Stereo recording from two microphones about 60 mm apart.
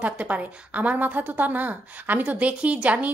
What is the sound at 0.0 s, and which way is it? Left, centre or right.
A woman's voice, right.